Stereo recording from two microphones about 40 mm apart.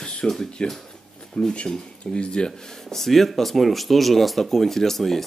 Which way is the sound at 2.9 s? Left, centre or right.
Centre.